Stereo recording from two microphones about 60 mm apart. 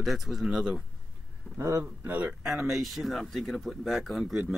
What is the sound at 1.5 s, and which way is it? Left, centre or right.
Speech, right.